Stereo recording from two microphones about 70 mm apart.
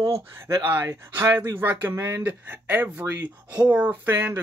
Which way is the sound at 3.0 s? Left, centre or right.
Right.